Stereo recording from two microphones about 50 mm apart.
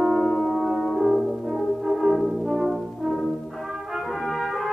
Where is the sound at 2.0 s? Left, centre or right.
Centre.